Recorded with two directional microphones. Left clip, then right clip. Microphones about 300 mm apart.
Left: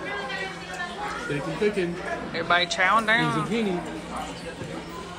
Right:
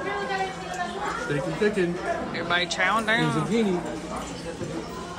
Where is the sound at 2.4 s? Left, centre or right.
Centre.